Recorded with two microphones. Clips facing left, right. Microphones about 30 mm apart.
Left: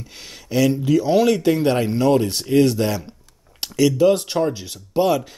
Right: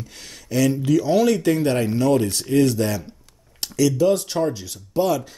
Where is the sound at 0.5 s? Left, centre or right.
Centre.